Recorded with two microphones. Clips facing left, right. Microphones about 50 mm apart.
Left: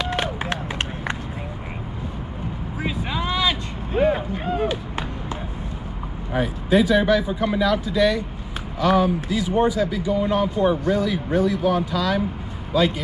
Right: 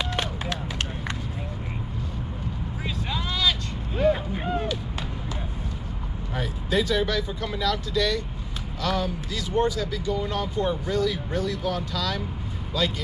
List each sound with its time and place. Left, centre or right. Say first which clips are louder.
0.1 s run: left 4 dB; left
2.8 s vehicle: left 6 dB; centre
4.6 s clapping: left 4 dB; left
6.3 s speech: left 7 dB; centre